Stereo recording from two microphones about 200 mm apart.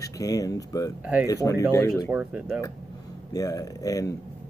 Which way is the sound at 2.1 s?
5° right (ahead or behind).